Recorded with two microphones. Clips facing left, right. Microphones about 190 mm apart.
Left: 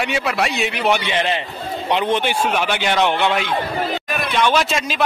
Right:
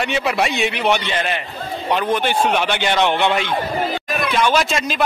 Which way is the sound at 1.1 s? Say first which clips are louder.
Left 2 dB; 25° left (ahead or behind).